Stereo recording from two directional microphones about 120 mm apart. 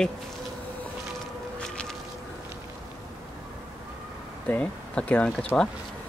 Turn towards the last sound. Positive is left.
turn(degrees=10)  # may be behind; listen again after turning